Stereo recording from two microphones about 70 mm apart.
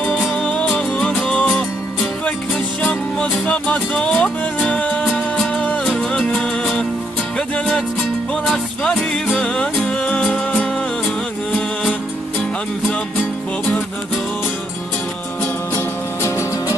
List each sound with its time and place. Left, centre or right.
0.0 s music: centre
0.5 s music: centre
2.8 s music: centre
5.9 s music: centre
16.2 s music: left